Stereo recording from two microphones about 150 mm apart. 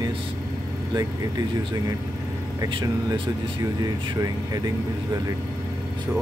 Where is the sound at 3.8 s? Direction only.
25° right (ahead or behind).